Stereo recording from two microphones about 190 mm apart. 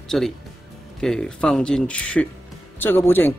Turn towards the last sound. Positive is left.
turn(degrees=10)  # may be behind; listen again after turning